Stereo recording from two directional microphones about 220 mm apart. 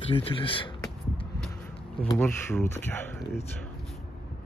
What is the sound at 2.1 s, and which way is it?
Speech, 10° left (ahead or behind).